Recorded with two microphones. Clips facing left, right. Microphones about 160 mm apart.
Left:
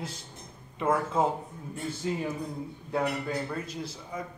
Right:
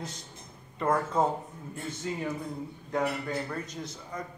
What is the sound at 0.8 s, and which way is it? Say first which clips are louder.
Speech: even; 5° left (ahead or behind).